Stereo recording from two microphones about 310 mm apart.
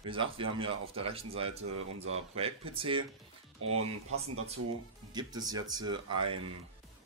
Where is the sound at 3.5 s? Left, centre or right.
Right.